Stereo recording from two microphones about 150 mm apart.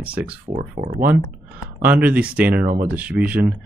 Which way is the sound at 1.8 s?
10° right (ahead or behind).